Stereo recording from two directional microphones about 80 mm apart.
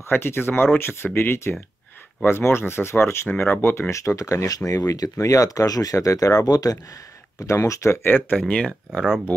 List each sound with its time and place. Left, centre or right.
0.1 s speech: left
8.1 s speech: centre